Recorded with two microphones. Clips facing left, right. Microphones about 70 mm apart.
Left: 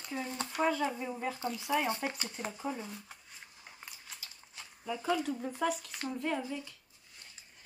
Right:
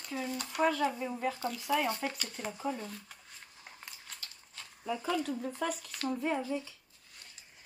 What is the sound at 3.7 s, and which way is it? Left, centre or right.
Chewing, centre.